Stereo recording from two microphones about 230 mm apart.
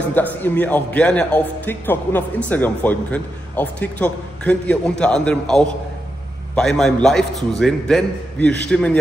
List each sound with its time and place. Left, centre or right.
0.1 s a man's voice: centre